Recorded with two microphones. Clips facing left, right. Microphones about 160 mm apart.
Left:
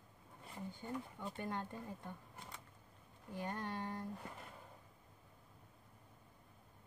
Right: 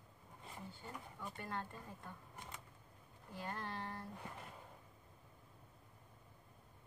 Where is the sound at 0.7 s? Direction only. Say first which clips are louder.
Left 6 dB; 20° left (ahead or behind).